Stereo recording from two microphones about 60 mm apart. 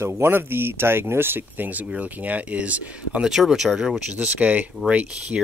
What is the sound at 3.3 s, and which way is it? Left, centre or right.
Speech, centre.